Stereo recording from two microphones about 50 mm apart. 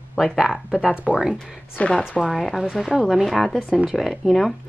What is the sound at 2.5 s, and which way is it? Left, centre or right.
Speech, centre.